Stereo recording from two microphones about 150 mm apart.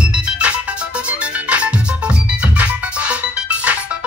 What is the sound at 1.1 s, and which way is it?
Music, 10° right (ahead or behind).